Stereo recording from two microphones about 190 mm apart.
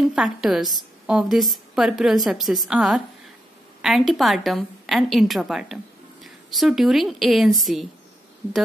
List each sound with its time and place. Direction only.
0.0 s a woman's voice: centre (ahead or behind)